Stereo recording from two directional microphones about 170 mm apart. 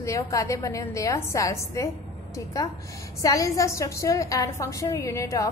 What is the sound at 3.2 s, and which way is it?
A woman's voice, 20° left (ahead or behind).